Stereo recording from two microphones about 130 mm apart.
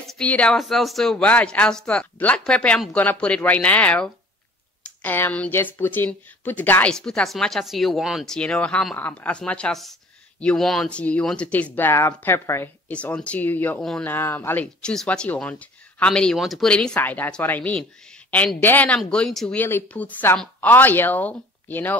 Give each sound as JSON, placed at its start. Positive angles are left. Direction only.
{"t": 0.1, "sound": "speech", "side_deg": 10}